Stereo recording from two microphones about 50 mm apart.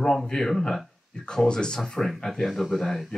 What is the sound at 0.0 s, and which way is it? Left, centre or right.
A man's voice, centre.